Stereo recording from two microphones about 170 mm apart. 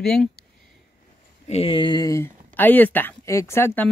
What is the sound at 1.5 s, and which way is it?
Speech, 35° left (ahead or behind).